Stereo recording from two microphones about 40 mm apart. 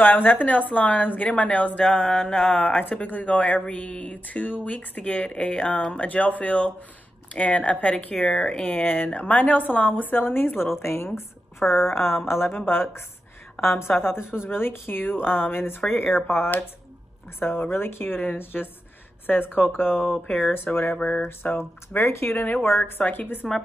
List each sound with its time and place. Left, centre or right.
0.0 s a woman's voice: left
2.0 s mantra: centre
2.7 s speech: left
3.9 s mantra: left
4.3 s speech: left
8.2 s mantra: left
8.8 s a woman's voice: left
10.8 s a woman's voice: left
11.6 s speech: centre
12.4 s a woman's voice: left
20.9 s speech: left
21.2 s a sound: left
21.5 s a woman's voice: left
22.5 s a woman's voice: left